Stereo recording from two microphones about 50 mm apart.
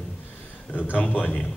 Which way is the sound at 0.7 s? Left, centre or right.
Left.